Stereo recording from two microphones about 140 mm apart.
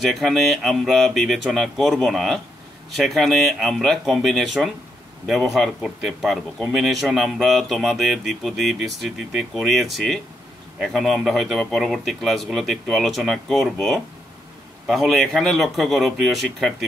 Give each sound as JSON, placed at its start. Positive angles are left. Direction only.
{"t": 0.1, "sound": "speech", "side_deg": 0}